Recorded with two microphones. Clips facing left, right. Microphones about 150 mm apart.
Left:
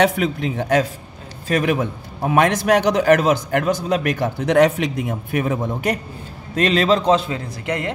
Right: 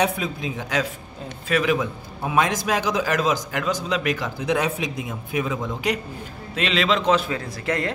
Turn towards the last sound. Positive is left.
turn(degrees=20)  # may be behind; listen again after turning